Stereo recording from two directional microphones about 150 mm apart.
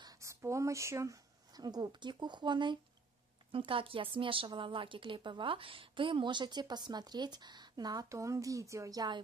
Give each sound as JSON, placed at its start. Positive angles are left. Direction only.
{"t": 0.0, "sound": "a woman's voice", "side_deg": -20}